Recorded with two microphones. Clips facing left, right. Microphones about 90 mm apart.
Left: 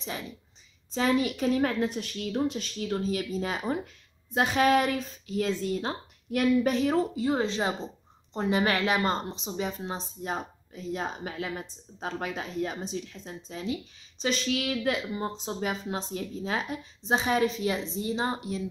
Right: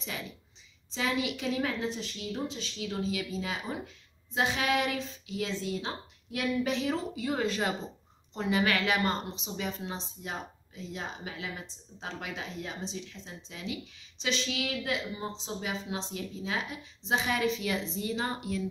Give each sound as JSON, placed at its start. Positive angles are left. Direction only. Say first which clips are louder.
{"t": 0.9, "sound": "speech", "louder": "left 6 dB", "side_deg": 40}
{"t": 7.2, "sound": "a woman's voice", "louder": "left 3 dB", "side_deg": 25}
{"t": 8.3, "sound": "a woman's voice", "louder": "left 2 dB", "side_deg": 35}